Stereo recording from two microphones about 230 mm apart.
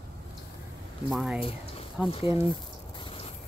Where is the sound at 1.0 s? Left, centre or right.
Centre.